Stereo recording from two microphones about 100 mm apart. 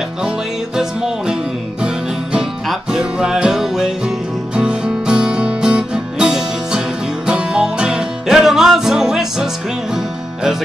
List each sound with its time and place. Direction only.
0.7 s music: 5° right (ahead or behind)